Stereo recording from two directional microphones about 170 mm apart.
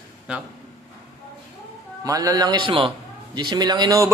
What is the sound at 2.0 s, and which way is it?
A man's voice, 20° right (ahead or behind).